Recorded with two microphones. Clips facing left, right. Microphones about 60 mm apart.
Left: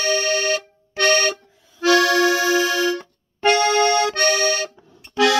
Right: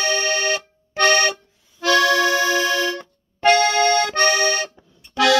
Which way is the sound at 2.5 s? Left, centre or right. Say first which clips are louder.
Left 1 dB; centre.